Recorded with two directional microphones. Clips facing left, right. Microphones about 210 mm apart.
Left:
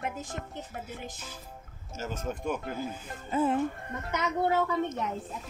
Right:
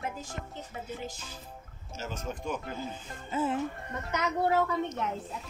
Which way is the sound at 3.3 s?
55° left (ahead or behind).